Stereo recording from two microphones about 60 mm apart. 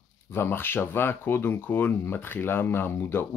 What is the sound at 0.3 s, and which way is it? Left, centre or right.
Speech, left.